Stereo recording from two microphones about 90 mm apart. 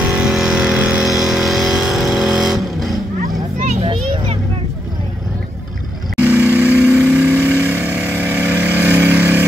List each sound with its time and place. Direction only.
0.1 s vehicle: 5° right (ahead or behind)
3.8 s children playing: 90° right
6.2 s vehicle: 20° right (ahead or behind)